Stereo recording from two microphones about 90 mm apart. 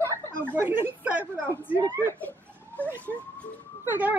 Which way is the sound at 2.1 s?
20° left (ahead or behind).